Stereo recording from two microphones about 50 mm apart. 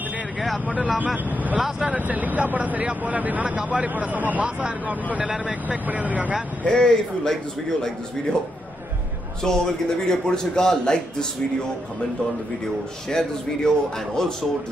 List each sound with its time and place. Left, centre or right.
0.9 s a man's voice: right
3.9 s speech: right
6.6 s speech: centre
9.4 s speech: centre
13.1 s speech: centre